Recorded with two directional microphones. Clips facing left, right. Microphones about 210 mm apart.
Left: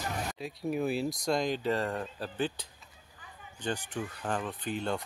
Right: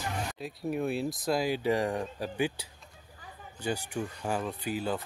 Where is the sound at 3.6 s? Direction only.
10° right (ahead or behind).